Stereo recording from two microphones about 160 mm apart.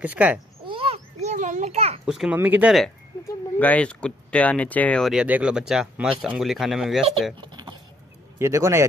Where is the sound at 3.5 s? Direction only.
10° left (ahead or behind).